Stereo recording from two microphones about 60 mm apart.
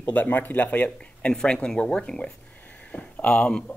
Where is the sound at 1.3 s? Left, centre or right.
Centre.